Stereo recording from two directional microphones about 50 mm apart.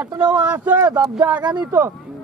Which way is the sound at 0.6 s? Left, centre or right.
Right.